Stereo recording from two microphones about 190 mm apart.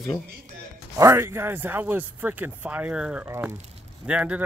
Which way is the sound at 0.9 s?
15° right (ahead or behind).